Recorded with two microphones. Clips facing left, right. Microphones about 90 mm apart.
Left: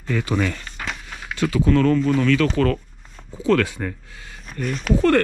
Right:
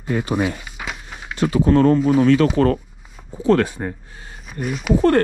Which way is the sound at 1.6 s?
25° right (ahead or behind).